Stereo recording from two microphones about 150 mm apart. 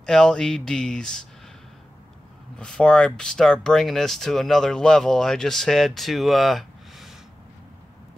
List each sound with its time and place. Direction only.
0.0 s speech: 5° left (ahead or behind)
2.5 s speech: 5° left (ahead or behind)